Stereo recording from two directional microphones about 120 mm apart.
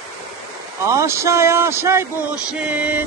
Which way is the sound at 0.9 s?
25° right (ahead or behind).